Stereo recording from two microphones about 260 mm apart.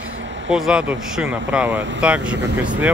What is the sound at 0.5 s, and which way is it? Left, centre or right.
Speech, centre.